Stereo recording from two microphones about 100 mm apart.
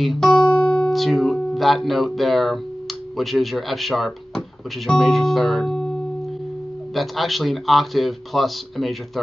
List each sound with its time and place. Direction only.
0.0 s speech: 5° left (ahead or behind)
7.0 s speech: centre (ahead or behind)